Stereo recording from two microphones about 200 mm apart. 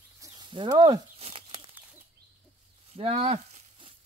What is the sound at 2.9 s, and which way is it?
Sizzle, 30° right (ahead or behind).